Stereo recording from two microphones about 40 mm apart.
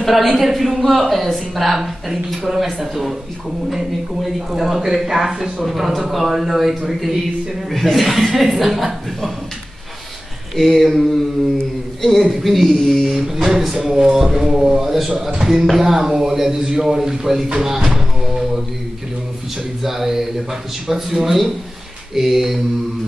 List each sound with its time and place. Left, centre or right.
0.0 s a woman's voice: centre
10.5 s a woman's voice: centre
11.5 s a sound: centre
12.3 s a woman's voice: centre
13.1 s speech: centre
19.8 s a woman's voice: centre